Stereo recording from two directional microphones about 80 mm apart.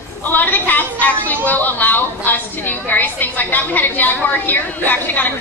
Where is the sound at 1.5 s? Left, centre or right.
Left.